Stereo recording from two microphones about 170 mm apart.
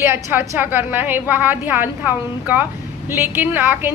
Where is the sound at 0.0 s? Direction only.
15° right (ahead or behind).